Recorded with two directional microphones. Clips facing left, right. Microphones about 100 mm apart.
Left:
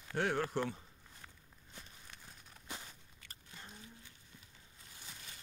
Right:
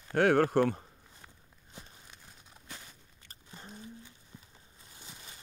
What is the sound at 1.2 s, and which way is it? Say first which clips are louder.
Walk: right 1 dB; 10° right (ahead or behind).